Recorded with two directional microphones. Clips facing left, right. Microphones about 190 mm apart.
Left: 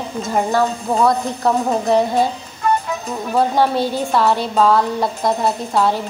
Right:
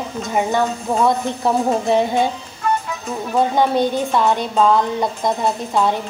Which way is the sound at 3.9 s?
Centre (ahead or behind).